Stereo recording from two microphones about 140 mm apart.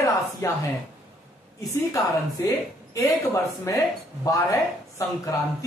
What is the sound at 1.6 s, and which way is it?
Speech, 25° left (ahead or behind).